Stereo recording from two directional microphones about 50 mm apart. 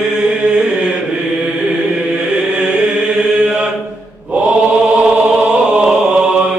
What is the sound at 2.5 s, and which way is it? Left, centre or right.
Chant, centre.